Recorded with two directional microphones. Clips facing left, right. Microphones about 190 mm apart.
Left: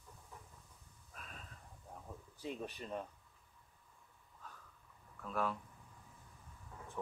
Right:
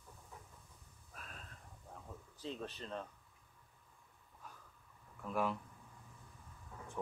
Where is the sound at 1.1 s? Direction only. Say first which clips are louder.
Even; centre (ahead or behind).